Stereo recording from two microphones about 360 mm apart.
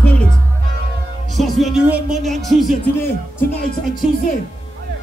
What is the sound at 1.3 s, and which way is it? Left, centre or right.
Music, centre.